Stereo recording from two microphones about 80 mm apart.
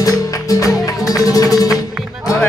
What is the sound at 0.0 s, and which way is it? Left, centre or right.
Music, left.